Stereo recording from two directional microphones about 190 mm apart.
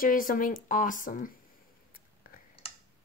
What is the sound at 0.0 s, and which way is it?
Speech, 45° left (ahead or behind).